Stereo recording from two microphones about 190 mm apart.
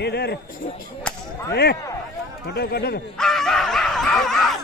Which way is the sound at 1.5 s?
60° left (ahead or behind).